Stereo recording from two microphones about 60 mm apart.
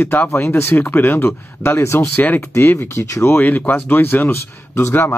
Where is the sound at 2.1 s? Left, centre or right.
Left.